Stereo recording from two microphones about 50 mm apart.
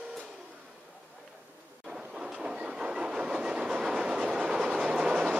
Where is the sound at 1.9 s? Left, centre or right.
Centre.